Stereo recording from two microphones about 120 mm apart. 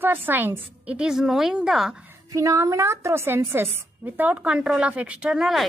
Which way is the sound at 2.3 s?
25° right (ahead or behind).